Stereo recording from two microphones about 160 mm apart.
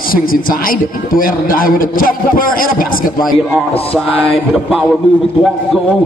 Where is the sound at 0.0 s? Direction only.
65° left (ahead or behind).